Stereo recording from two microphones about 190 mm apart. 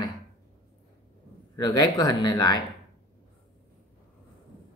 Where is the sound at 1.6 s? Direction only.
20° left (ahead or behind).